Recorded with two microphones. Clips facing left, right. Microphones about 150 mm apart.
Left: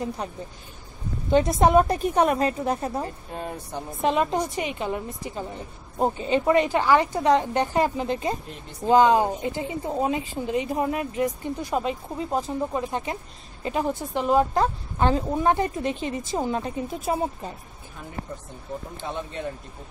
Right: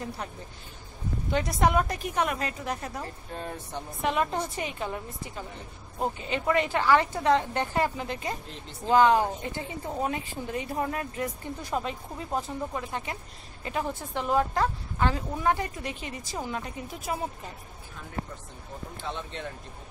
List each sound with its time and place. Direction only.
0.2 s speech: 20° left (ahead or behind)
3.3 s speech: 15° left (ahead or behind)
5.9 s speech: 30° left (ahead or behind)